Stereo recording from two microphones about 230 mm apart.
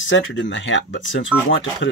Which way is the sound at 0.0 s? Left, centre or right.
Left.